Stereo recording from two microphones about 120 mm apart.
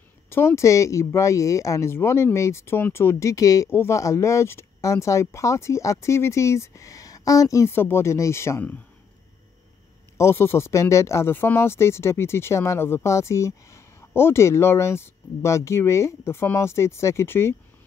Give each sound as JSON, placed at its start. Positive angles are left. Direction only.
{"t": 0.3, "sound": "speech", "side_deg": 20}
{"t": 10.1, "sound": "speech", "side_deg": 20}